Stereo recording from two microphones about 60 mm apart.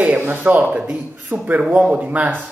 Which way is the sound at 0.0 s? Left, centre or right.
Right.